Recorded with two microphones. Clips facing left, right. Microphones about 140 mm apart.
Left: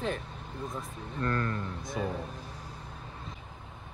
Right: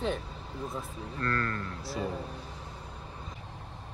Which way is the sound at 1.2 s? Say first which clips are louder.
Left 1 dB; 15° left (ahead or behind).